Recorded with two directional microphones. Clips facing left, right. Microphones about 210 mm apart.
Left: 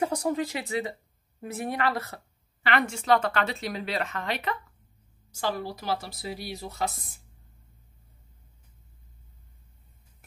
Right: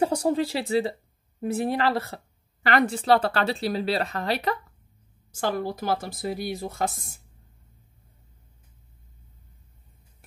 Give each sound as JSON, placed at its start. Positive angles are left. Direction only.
{"t": 0.0, "sound": "a woman's voice", "side_deg": -30}
{"t": 5.3, "sound": "speech", "side_deg": -50}